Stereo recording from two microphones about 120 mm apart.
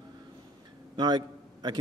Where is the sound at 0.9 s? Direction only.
35° right (ahead or behind).